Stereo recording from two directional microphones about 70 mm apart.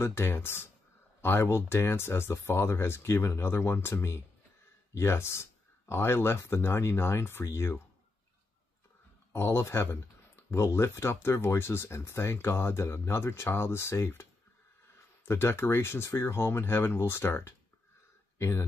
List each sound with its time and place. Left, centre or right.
0.0 s speech: left
9.3 s speech: left
15.2 s speech: left